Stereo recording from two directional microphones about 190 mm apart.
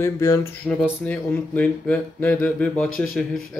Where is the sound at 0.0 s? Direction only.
15° left (ahead or behind).